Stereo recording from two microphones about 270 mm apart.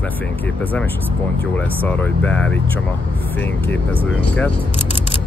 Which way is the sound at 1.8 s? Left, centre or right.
Centre.